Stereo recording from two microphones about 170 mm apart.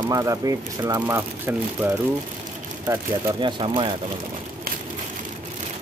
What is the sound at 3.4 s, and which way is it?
Speech, 30° right (ahead or behind).